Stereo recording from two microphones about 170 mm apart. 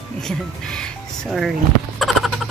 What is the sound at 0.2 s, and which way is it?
Speech, 5° left (ahead or behind).